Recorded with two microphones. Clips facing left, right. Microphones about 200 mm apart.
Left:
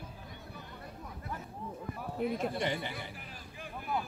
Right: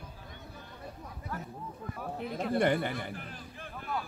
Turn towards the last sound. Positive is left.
turn(degrees=10)  # may be behind; listen again after turning